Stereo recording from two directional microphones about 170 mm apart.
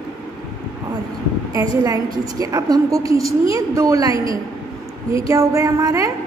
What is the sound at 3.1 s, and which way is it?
Speech, 35° left (ahead or behind).